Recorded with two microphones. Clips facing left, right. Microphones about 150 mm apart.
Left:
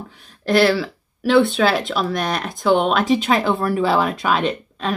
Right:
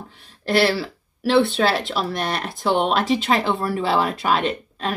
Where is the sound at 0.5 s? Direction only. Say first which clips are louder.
Left 3 dB; centre (ahead or behind).